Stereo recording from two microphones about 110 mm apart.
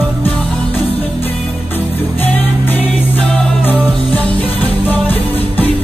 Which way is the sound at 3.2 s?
5° left (ahead or behind).